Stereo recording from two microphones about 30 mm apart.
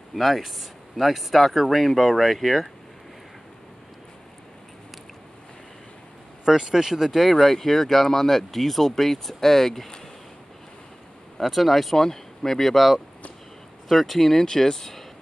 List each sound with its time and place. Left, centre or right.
0.1 s speech: centre
6.4 s speech: centre
7.1 s speech: centre
11.3 s speech: centre
14.3 s speech: centre